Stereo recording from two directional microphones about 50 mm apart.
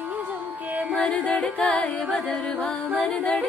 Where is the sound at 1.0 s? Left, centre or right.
Left.